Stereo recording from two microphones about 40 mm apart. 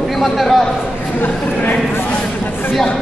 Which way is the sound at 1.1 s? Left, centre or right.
Left.